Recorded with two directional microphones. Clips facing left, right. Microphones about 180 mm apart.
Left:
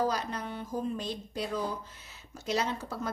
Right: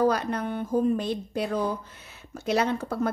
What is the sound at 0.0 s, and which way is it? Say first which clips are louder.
A woman's voice: right 7 dB; 60° right (ahead or behind).